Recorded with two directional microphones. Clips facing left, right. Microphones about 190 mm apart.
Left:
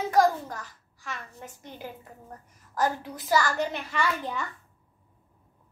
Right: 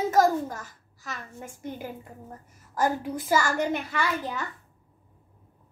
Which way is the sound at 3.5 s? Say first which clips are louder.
Right 2 dB; 10° right (ahead or behind).